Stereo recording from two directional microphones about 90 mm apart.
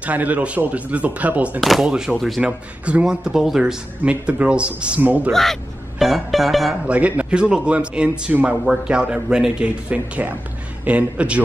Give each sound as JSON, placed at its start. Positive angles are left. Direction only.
{"t": 0.0, "sound": "speech", "side_deg": -15}
{"t": 1.6, "sound": "speech", "side_deg": 0}
{"t": 2.4, "sound": "speech", "side_deg": -15}
{"t": 5.3, "sound": "speech", "side_deg": 5}
{"t": 6.9, "sound": "speech", "side_deg": -15}